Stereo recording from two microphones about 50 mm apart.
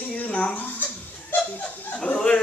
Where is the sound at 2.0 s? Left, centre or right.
Centre.